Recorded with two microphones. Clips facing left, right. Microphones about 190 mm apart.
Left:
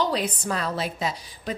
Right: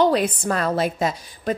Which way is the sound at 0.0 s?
55° right (ahead or behind).